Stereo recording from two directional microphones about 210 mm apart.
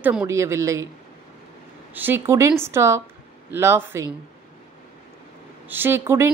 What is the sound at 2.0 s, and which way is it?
A woman's voice, 10° right (ahead or behind).